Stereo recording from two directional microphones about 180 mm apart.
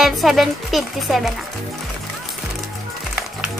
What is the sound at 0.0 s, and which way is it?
Speech, centre (ahead or behind).